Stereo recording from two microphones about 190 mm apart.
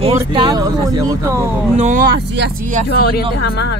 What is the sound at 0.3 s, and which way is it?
Speech, 25° right (ahead or behind).